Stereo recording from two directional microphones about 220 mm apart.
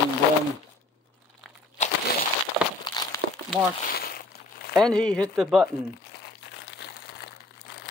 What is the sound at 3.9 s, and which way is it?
Crumpling, 45° left (ahead or behind).